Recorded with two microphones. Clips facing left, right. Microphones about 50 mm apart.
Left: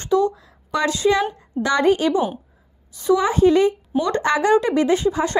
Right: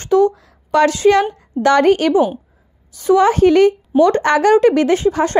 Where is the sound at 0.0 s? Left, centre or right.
Right.